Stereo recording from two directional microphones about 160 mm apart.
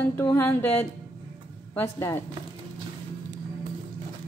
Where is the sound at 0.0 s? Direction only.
10° left (ahead or behind).